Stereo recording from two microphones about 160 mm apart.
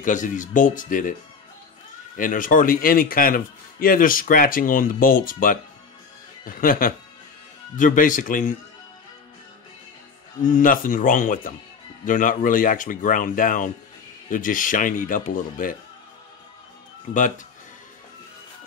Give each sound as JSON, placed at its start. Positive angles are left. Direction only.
{"t": 0.0, "sound": "a man's voice", "side_deg": 55}
{"t": 2.1, "sound": "a man's voice", "side_deg": 60}
{"t": 10.4, "sound": "a man's voice", "side_deg": 55}